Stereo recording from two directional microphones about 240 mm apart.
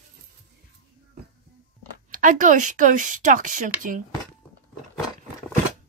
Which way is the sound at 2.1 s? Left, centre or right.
Right.